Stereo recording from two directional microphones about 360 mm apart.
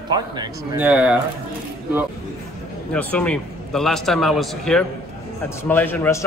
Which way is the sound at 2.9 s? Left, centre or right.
Centre.